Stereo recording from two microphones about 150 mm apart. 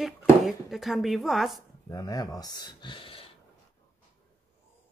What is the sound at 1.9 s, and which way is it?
Speech, 25° left (ahead or behind).